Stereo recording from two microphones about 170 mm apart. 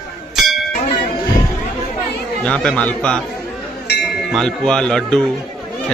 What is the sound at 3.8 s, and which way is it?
Chink, 75° left (ahead or behind).